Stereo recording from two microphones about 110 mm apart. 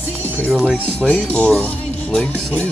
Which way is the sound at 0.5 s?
5° right (ahead or behind).